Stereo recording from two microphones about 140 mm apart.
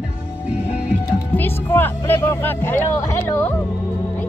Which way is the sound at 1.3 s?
15° left (ahead or behind).